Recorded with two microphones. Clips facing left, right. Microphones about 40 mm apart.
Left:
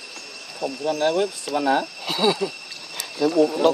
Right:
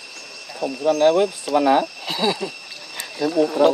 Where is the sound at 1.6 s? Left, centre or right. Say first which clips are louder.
Right 4 dB; right.